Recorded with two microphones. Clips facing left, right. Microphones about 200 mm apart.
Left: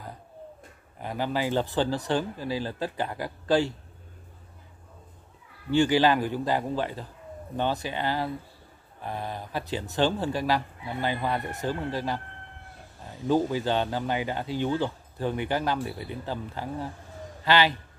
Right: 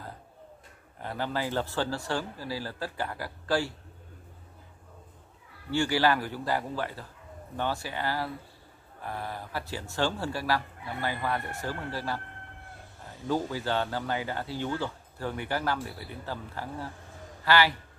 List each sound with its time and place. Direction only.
0.9 s speech: 15° left (ahead or behind)
5.7 s speech: 20° left (ahead or behind)
13.3 s speech: 20° left (ahead or behind)